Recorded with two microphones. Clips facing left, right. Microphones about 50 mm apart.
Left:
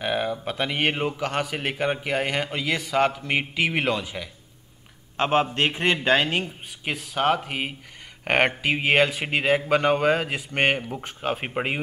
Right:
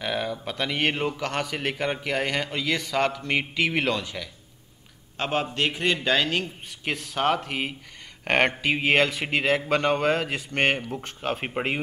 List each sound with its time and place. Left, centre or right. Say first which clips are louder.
0.0 s a man's voice: left 3 dB; centre
5.1 s a man's voice: left 5 dB; left
6.8 s a man's voice: left 1 dB; centre